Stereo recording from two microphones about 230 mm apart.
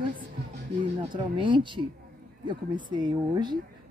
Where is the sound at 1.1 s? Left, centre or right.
Right.